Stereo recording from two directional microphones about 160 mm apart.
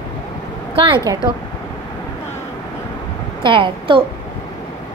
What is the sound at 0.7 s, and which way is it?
Speech, 35° right (ahead or behind).